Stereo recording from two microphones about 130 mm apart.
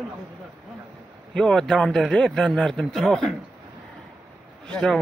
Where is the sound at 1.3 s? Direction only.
5° left (ahead or behind).